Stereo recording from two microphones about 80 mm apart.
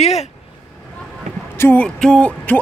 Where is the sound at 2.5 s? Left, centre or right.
Left.